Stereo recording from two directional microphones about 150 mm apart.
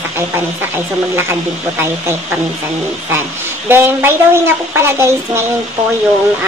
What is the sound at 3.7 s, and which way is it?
Speech, 15° right (ahead or behind).